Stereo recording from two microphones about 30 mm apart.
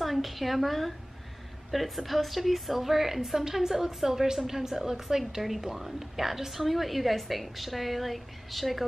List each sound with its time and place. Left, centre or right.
0.0 s a woman's voice: centre